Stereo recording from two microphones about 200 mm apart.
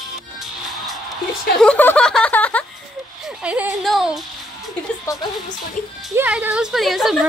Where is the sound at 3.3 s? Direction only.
5° right (ahead or behind).